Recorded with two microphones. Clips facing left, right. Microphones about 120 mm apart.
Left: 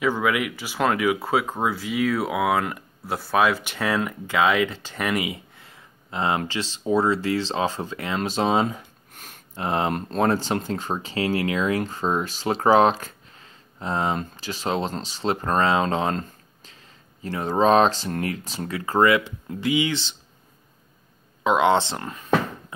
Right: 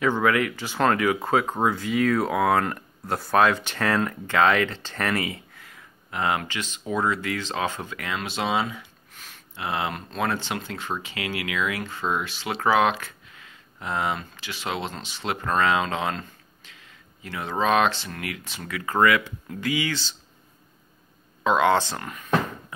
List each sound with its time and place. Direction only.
0.0 s speech: 5° left (ahead or behind)
21.5 s speech: 20° left (ahead or behind)